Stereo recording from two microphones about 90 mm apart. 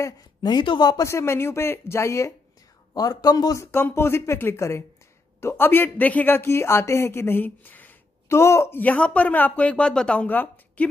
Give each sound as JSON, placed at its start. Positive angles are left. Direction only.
{"t": 0.4, "sound": "speech", "side_deg": 55}
{"t": 1.0, "sound": "a man's voice", "side_deg": 30}
{"t": 3.6, "sound": "speech", "side_deg": 25}
{"t": 8.3, "sound": "speech", "side_deg": 30}